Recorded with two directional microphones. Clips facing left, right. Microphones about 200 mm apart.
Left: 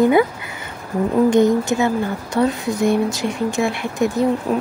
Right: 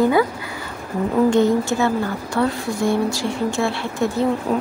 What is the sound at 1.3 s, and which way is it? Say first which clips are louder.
A woman's voice: left 2 dB; 15° left (ahead or behind).